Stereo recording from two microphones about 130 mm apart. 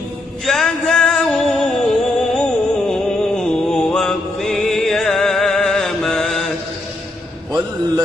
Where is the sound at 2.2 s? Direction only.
5° left (ahead or behind).